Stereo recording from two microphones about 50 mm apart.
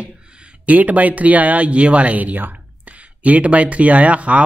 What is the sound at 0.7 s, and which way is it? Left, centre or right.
Speech, right.